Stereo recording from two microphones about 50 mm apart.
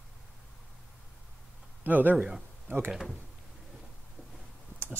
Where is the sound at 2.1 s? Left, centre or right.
Centre.